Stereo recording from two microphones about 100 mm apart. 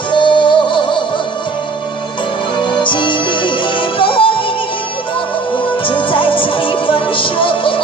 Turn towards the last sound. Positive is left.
turn(degrees=60)  # may be behind; listen again after turning